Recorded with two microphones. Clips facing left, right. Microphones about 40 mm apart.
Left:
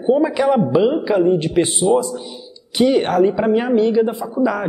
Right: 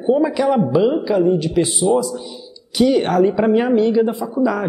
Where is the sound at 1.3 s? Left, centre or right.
Left.